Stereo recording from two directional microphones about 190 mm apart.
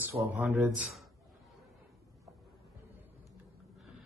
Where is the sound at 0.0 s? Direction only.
10° right (ahead or behind).